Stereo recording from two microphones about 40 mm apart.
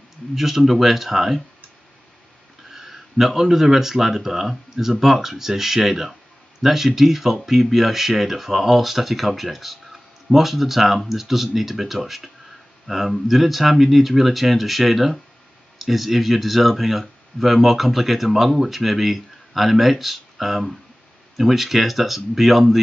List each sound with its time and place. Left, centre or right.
0.3 s speech: centre
2.7 s speech: centre